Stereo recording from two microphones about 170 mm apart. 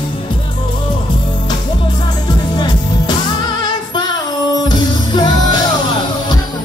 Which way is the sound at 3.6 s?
25° left (ahead or behind).